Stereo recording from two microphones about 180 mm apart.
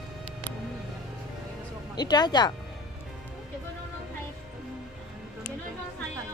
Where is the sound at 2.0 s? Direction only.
25° left (ahead or behind).